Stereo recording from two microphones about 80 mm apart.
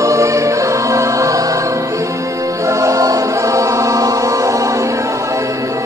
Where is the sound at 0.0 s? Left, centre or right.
Right.